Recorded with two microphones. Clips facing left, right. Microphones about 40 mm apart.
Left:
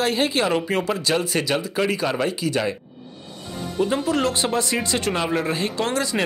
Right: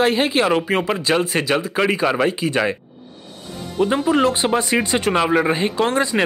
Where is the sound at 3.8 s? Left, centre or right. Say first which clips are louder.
Right 5 dB; right.